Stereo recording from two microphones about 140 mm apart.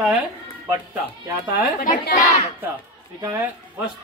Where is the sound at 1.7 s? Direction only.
75° left (ahead or behind).